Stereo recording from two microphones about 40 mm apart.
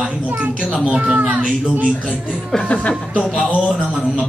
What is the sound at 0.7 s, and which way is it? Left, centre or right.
Speech, right.